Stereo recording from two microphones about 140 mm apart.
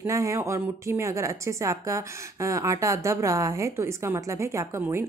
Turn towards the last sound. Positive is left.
turn(degrees=-20)  # may be behind; listen again after turning